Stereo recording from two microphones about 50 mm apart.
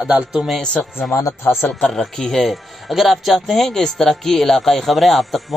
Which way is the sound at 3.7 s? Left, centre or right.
Centre.